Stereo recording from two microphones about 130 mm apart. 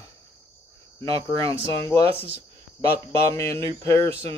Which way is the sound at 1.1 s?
25° left (ahead or behind).